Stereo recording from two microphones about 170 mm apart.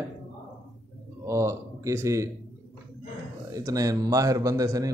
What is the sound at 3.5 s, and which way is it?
A man's voice, 20° right (ahead or behind).